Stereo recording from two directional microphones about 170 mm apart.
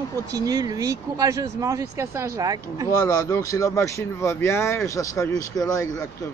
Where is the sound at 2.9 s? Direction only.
20° left (ahead or behind).